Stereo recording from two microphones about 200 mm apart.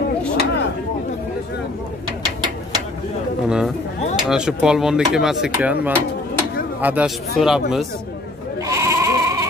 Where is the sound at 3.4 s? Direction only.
5° right (ahead or behind).